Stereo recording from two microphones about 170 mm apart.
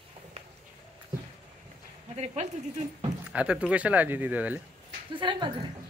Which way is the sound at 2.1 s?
40° right (ahead or behind).